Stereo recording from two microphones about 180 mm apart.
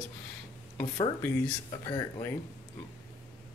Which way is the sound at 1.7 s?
25° left (ahead or behind).